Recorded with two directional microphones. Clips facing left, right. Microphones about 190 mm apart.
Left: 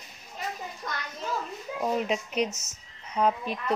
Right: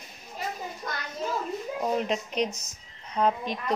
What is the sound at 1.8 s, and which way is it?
Speech, centre (ahead or behind).